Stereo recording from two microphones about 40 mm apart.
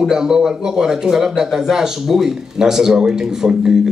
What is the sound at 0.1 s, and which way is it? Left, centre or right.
A man's voice, centre.